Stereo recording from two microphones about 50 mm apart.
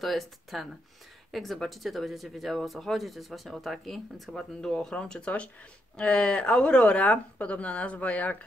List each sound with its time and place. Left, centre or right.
0.0 s speech: centre; by 8.4 s left